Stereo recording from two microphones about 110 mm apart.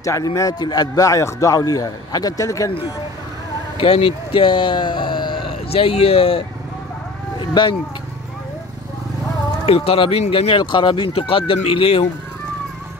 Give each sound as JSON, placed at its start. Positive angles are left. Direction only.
{"t": 0.0, "sound": "speech", "side_deg": 30}
{"t": 3.7, "sound": "speech", "side_deg": 60}
{"t": 7.3, "sound": "livestock", "side_deg": 45}
{"t": 9.7, "sound": "speech", "side_deg": 60}
{"t": 10.5, "sound": "speech", "side_deg": 45}